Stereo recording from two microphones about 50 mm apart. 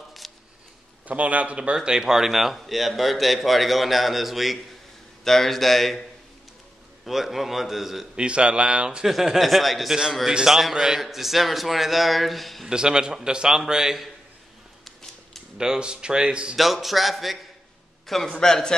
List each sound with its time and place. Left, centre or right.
0.2 s a sound: centre
1.0 s speech: right
1.8 s a man's voice: centre
7.1 s a man's voice: centre
8.2 s speech: right
9.0 s a man's voice: centre
12.6 s a man's voice: centre
15.5 s a man's voice: centre
16.5 s a man's voice: centre